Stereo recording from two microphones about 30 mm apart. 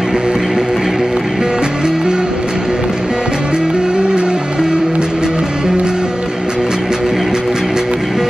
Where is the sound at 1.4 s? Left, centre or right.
Right.